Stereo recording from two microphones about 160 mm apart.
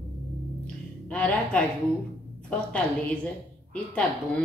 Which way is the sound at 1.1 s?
10° left (ahead or behind).